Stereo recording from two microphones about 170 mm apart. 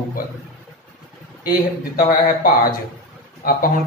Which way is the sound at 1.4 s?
55° left (ahead or behind).